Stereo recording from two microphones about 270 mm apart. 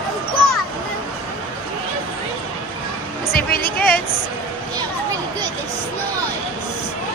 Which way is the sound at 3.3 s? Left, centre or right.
Left.